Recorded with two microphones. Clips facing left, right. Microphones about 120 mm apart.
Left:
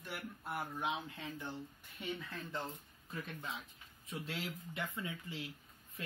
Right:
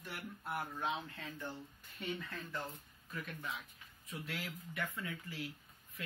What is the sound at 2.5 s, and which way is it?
Speech, 25° left (ahead or behind).